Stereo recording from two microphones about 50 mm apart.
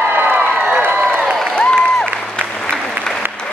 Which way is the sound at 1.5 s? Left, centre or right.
Centre.